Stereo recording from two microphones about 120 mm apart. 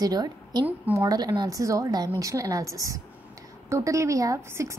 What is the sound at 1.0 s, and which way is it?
A woman's voice, 35° right (ahead or behind).